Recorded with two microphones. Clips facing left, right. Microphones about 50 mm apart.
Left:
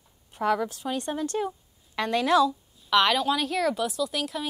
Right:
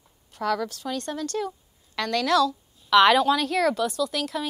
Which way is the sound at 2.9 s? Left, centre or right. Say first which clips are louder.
Right 5 dB; centre.